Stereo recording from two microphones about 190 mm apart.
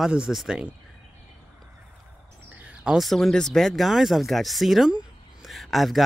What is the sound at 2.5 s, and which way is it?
Speech, 5° right (ahead or behind).